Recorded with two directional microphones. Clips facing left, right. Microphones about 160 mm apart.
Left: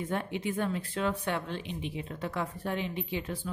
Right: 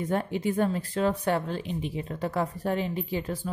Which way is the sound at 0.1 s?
40° right (ahead or behind).